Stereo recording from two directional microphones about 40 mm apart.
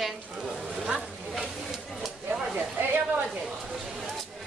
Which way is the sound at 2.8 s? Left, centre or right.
Right.